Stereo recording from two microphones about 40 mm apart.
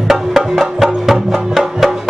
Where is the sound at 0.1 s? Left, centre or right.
Centre.